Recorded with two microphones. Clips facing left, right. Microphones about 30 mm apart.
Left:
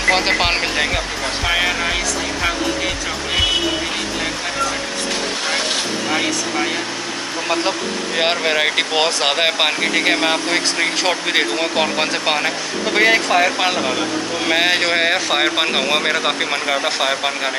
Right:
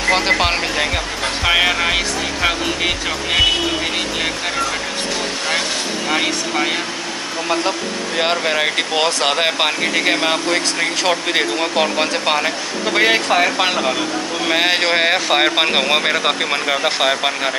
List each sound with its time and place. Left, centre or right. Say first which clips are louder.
0.1 s speech: even; centre
1.4 s speech: right 3 dB; centre
6.0 s speech: right 3 dB; centre
8.2 s speech: even; centre